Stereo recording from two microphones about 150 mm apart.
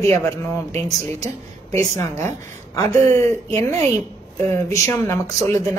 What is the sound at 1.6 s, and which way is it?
A woman's voice, 20° left (ahead or behind).